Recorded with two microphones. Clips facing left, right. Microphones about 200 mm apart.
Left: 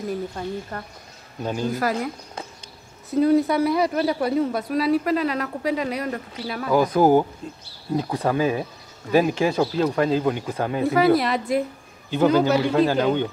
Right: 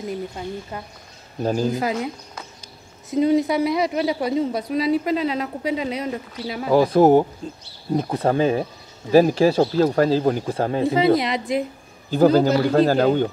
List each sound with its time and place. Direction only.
0.7 s speech: 5° right (ahead or behind)
1.4 s speech: 35° right (ahead or behind)
3.2 s speech: 15° right (ahead or behind)
6.7 s speech: 30° right (ahead or behind)
10.9 s speech: 20° right (ahead or behind)
12.1 s speech: 40° right (ahead or behind)